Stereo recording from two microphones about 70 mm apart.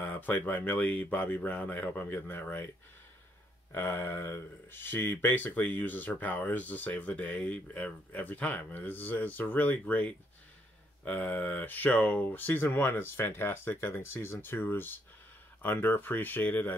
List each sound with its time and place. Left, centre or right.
0.0 s speech: left
3.7 s speech: left